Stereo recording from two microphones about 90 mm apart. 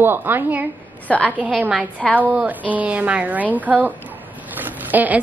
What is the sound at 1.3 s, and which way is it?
A woman's voice, 15° right (ahead or behind).